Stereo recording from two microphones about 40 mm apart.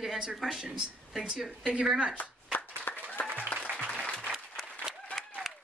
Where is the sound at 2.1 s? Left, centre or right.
Left.